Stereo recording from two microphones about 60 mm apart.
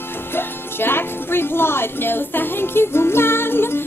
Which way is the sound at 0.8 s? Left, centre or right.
Left.